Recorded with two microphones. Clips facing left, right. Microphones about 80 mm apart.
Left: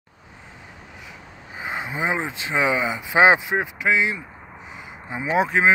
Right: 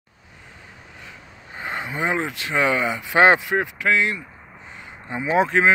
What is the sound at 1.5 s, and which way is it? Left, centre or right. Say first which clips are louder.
Speech: even; centre.